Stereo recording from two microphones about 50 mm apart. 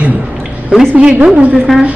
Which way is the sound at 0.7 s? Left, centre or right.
Centre.